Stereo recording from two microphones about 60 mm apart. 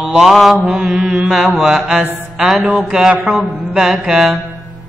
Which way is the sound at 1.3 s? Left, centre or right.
Centre.